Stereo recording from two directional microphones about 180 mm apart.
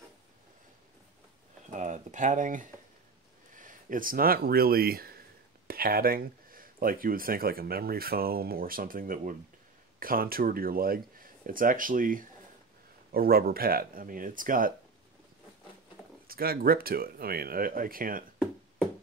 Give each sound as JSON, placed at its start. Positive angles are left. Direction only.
{"t": 1.7, "sound": "speech", "side_deg": -40}
{"t": 16.3, "sound": "speech", "side_deg": -55}